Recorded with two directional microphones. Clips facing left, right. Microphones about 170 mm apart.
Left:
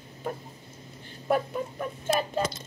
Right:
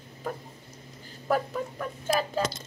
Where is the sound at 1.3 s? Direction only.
15° left (ahead or behind).